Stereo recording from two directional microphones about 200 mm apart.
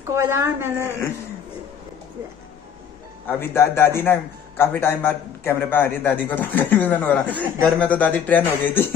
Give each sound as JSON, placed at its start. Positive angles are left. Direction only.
{"t": 0.0, "sound": "speech", "side_deg": -15}
{"t": 3.3, "sound": "a man's voice", "side_deg": 10}